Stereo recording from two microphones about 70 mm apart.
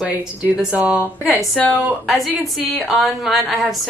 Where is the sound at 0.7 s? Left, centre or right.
Right.